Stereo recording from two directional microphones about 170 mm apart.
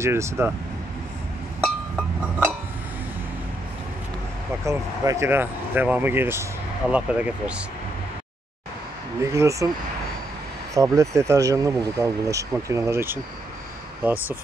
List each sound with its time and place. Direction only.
0.0 s speech: 15° right (ahead or behind)
4.6 s speech: 15° right (ahead or behind)
9.2 s speech: 20° right (ahead or behind)
10.7 s speech: 20° right (ahead or behind)